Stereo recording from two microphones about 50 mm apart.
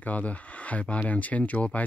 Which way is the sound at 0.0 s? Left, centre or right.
Left.